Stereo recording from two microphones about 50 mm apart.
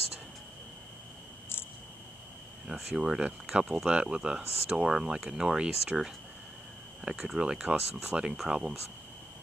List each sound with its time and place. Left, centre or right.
2.6 s speech: centre